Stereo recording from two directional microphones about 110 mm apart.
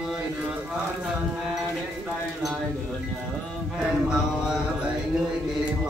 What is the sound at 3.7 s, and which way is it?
Mantra, 5° right (ahead or behind).